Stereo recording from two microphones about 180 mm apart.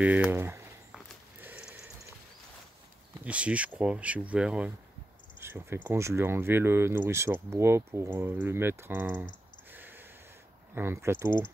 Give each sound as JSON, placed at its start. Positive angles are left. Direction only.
{"t": 0.0, "sound": "speech", "side_deg": -10}
{"t": 1.4, "sound": "a sound", "side_deg": -5}
{"t": 3.3, "sound": "speech", "side_deg": -5}
{"t": 9.7, "sound": "snort", "side_deg": -10}
{"t": 10.7, "sound": "speech", "side_deg": -15}